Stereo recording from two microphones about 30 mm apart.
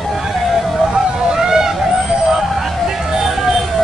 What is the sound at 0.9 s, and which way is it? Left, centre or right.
Vehicle, right.